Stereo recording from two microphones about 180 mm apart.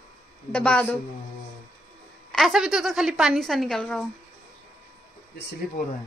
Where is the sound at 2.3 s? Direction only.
Centre (ahead or behind).